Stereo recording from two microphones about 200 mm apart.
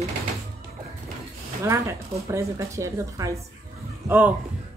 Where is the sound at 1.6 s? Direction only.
15° right (ahead or behind).